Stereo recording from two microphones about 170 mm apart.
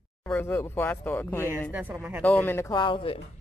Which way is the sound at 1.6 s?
10° right (ahead or behind).